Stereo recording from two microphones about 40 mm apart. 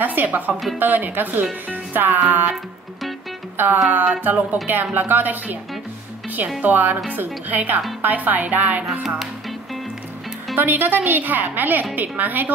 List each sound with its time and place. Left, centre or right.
0.0 s a woman's voice: right
1.7 s music: right
3.5 s music: right
3.9 s a woman's voice: right
6.6 s a woman's voice: right
10.5 s a woman's voice: right